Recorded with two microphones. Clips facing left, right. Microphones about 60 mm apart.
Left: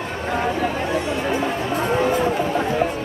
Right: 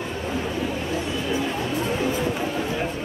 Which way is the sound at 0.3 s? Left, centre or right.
Left.